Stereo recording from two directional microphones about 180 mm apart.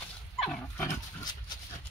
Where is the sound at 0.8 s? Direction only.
25° left (ahead or behind).